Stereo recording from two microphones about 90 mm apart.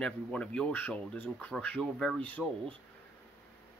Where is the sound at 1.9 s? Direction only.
5° left (ahead or behind).